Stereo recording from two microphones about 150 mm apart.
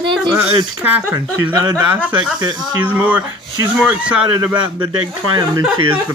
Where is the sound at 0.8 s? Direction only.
15° right (ahead or behind).